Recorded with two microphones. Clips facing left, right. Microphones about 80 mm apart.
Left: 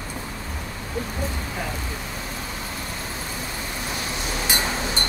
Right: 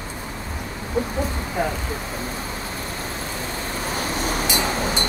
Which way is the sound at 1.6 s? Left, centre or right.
Right.